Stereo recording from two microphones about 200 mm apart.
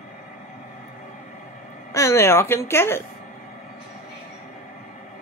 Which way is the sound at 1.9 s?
15° left (ahead or behind).